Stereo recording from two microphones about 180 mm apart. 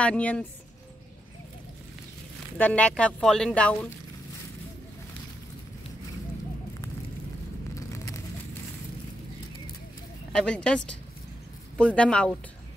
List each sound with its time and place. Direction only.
0.0 s speech: 5° left (ahead or behind)
2.5 s speech: 5° left (ahead or behind)
7.7 s a sound: 20° left (ahead or behind)
10.3 s speech: 5° left (ahead or behind)